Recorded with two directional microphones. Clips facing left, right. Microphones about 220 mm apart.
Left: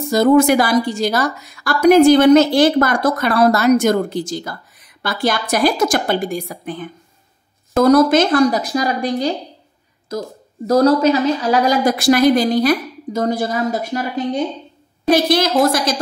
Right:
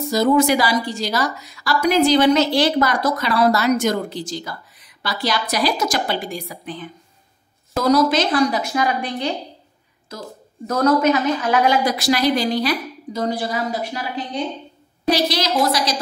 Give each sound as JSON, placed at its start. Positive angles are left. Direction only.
{"t": 0.1, "sound": "a woman's voice", "side_deg": 55}
{"t": 10.7, "sound": "a woman's voice", "side_deg": 30}